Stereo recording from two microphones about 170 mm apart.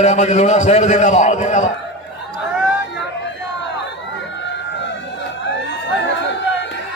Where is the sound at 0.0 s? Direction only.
40° left (ahead or behind).